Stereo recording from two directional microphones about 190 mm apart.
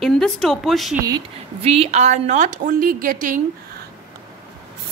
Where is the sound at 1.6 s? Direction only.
30° right (ahead or behind).